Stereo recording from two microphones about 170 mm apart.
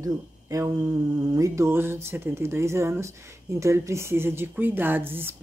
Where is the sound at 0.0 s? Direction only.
20° right (ahead or behind).